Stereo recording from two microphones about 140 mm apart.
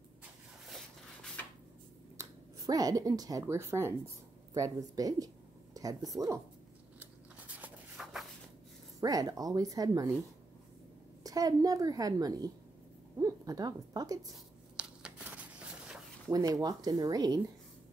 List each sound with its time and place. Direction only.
0.7 s a sound: 5° left (ahead or behind)
2.1 s a woman's voice: 25° right (ahead or behind)
7.0 s shuffling cards: 10° right (ahead or behind)
9.0 s a woman's voice: 25° right (ahead or behind)
11.2 s a woman's voice: 25° right (ahead or behind)
14.8 s tearing: 5° right (ahead or behind)
16.3 s a woman's voice: 25° right (ahead or behind)